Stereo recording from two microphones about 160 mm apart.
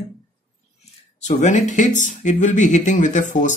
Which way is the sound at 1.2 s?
45° left (ahead or behind).